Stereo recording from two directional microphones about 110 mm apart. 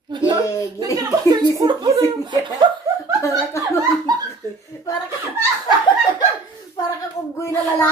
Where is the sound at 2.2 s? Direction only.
40° right (ahead or behind).